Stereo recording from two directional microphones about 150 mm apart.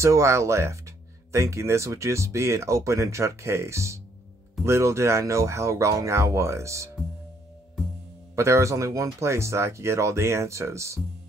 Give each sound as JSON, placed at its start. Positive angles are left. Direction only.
{"t": 0.0, "sound": "speech", "side_deg": -20}
{"t": 8.4, "sound": "speech", "side_deg": -20}